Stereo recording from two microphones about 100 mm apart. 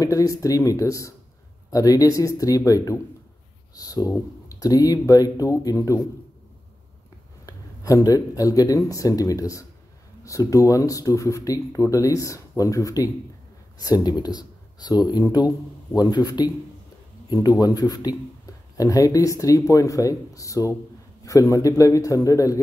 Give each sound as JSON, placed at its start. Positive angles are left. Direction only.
{"t": 0.0, "sound": "speech", "side_deg": 35}
{"t": 7.4, "sound": "speech", "side_deg": 35}